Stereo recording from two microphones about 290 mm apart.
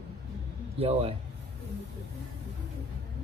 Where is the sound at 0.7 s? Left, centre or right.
Centre.